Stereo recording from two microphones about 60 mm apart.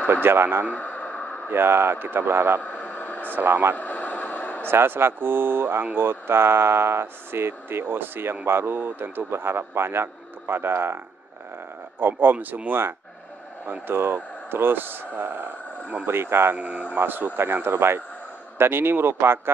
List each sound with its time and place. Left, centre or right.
0.1 s a man's voice: right
0.7 s a sound: left
1.5 s a man's voice: right
2.6 s a sound: left
3.3 s a man's voice: right
3.7 s a sound: left
4.6 s a man's voice: right
12.0 s a man's voice: right
16.5 s a man's voice: right